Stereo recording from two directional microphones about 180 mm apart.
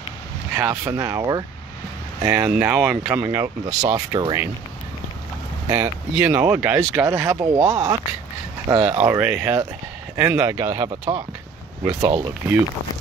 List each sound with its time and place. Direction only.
0.6 s speech: 15° right (ahead or behind)
3.6 s speech: 40° right (ahead or behind)
4.1 s speech: 20° right (ahead or behind)
5.7 s speech: 15° right (ahead or behind)